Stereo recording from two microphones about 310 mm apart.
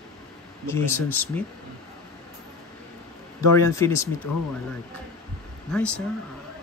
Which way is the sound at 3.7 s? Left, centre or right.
Centre.